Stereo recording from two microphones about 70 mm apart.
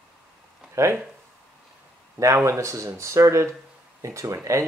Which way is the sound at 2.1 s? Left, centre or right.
Right.